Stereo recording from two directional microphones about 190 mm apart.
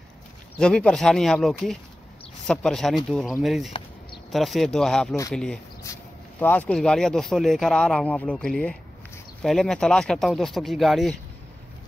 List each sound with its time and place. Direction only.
0.6 s speech: 5° left (ahead or behind)
5.9 s a sound: 15° left (ahead or behind)
6.4 s speech: 10° left (ahead or behind)